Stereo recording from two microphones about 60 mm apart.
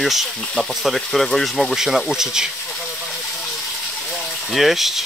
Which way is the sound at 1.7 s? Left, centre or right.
Centre.